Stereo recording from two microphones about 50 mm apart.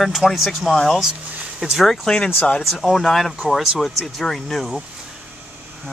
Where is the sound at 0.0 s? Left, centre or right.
Centre.